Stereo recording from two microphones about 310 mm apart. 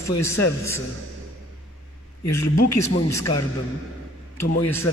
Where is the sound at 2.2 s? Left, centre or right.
Left.